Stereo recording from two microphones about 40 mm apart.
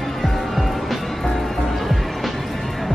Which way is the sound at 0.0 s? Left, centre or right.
Centre.